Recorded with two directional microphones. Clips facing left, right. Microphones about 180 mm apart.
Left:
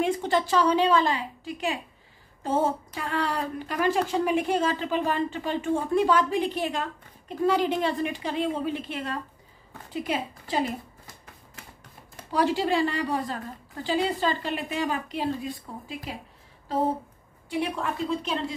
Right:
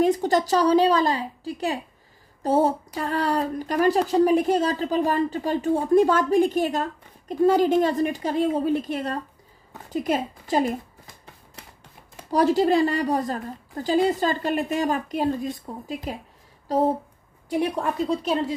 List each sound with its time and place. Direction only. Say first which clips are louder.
0.0 s a woman's voice: right 5 dB; 40° right (ahead or behind)
12.3 s a woman's voice: right 5 dB; 40° right (ahead or behind)